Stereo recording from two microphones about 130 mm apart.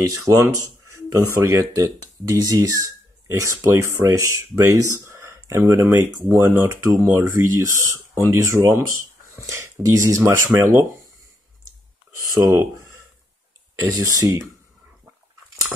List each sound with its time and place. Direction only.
0.4 s speech: 25° right (ahead or behind)
12.4 s speech: 25° right (ahead or behind)